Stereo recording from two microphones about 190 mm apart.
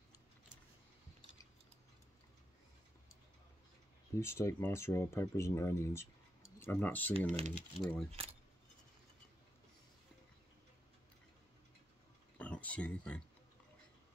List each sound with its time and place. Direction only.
4.2 s speech: 15° left (ahead or behind)
7.2 s speech: 35° right (ahead or behind)
7.5 s speech: 5° left (ahead or behind)
12.4 s a sound: 5° left (ahead or behind)